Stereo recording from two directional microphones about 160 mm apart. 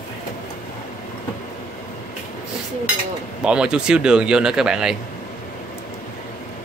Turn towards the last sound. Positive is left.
turn(degrees=-5)  # may be behind; listen again after turning